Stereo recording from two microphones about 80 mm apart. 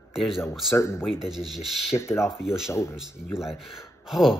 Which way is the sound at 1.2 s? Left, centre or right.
Centre.